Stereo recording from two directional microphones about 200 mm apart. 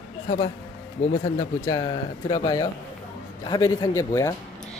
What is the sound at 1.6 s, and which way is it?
A child's voice, 20° left (ahead or behind).